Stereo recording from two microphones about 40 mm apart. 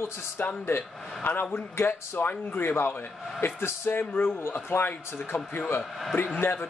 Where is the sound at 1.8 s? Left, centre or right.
Left.